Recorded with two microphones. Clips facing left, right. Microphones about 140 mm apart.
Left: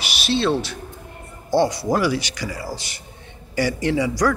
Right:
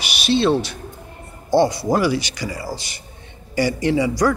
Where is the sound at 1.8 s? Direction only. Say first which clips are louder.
Right 2 dB; 10° right (ahead or behind).